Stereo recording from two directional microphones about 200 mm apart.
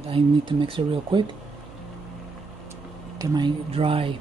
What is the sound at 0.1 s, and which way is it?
Speech, 25° right (ahead or behind).